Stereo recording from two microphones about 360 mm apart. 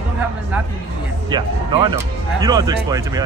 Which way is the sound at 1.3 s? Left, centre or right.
Centre.